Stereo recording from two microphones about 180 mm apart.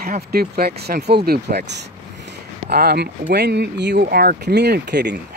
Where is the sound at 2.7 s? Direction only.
60° right (ahead or behind).